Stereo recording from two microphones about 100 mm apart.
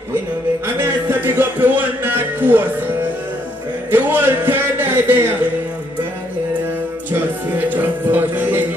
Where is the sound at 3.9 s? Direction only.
20° right (ahead or behind).